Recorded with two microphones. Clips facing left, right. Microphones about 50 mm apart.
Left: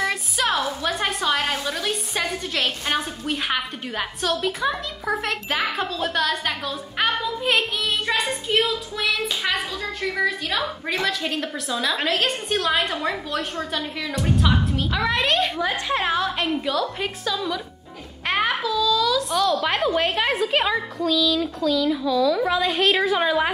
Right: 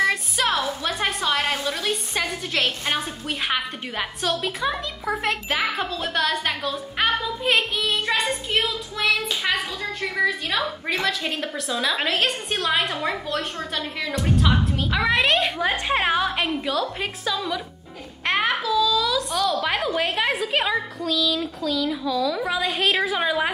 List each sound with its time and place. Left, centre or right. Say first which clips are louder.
0.0 s a sound: right 2 dB; centre
0.8 s a woman's voice: left 1 dB; centre
15.6 s a woman's voice: right 1 dB; right
16.6 s a woman's voice: left 1 dB; centre